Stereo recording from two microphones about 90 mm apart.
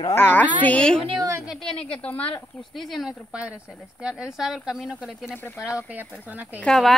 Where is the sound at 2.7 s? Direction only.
Centre (ahead or behind).